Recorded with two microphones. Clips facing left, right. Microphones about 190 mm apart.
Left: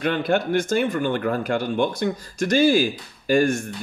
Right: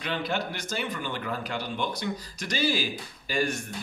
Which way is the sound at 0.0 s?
55° left (ahead or behind).